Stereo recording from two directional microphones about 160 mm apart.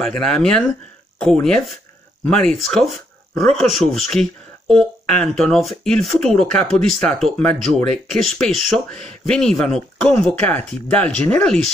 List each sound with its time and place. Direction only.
0.0 s speech: 5° left (ahead or behind)